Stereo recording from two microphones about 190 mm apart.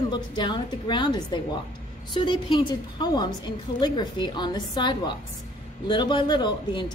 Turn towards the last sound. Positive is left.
turn(degrees=25)  # may be behind; listen again after turning